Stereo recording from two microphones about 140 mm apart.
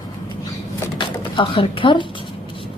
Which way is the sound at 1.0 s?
40° left (ahead or behind).